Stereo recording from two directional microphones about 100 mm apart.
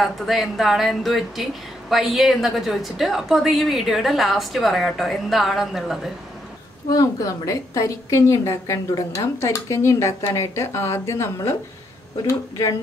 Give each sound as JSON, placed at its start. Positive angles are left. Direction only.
{"t": 0.0, "sound": "speech", "side_deg": 0}
{"t": 6.9, "sound": "a woman's voice", "side_deg": 35}